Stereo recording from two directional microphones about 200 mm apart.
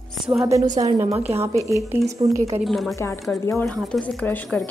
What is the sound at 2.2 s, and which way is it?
Speech, 25° right (ahead or behind).